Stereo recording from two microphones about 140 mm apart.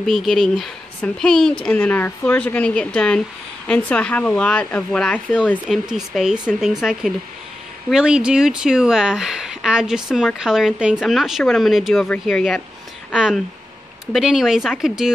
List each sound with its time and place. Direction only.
0.0 s speech: centre (ahead or behind)
5.7 s a woman's voice: centre (ahead or behind)